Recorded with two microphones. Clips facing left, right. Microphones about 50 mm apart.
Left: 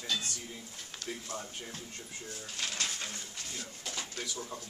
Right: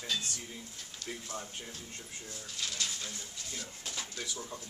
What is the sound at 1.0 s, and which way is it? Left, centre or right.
Speech, left.